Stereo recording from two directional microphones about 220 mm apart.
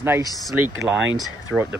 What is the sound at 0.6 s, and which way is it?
Speech, 60° right (ahead or behind).